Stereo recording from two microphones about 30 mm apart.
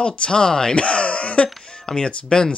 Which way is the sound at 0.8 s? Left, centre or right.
Left.